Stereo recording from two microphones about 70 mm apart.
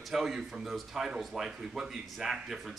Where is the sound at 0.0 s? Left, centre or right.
Centre.